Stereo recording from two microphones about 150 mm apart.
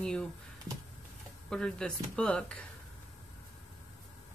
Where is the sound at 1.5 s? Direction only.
5° left (ahead or behind).